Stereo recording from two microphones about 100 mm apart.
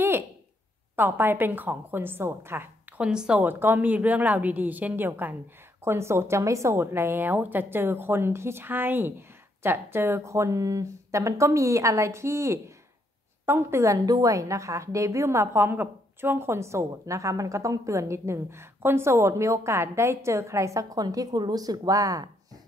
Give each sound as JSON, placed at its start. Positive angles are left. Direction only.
{"t": 0.9, "sound": "a woman's voice", "side_deg": -20}
{"t": 3.0, "sound": "a woman's voice", "side_deg": -10}